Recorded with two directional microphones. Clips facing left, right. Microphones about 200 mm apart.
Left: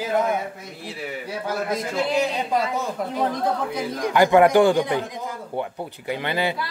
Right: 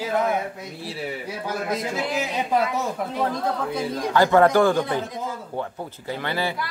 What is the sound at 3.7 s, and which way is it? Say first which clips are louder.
Speech: even; 15° left (ahead or behind).